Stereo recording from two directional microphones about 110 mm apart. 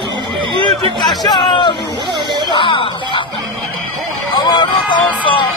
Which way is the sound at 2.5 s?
50° left (ahead or behind).